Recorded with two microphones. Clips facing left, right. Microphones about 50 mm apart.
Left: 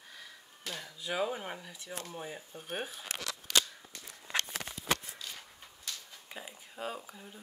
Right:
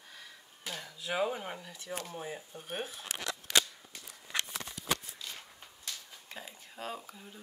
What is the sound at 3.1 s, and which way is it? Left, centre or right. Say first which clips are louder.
Scissors: right 3 dB; right.